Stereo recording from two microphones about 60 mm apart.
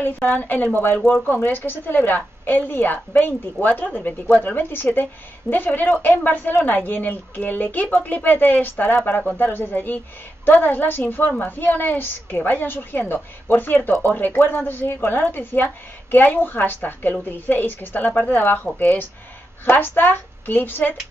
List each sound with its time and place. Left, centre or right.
0.0 s a woman's voice: left